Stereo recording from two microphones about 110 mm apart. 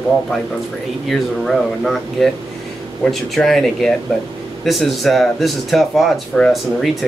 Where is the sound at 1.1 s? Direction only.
Centre (ahead or behind).